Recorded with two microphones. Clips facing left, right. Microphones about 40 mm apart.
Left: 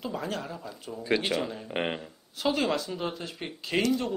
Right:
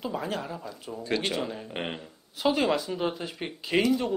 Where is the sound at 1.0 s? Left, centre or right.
Centre.